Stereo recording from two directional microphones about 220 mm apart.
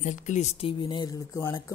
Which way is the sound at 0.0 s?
35° left (ahead or behind).